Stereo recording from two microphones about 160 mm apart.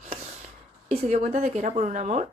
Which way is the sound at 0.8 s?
45° right (ahead or behind).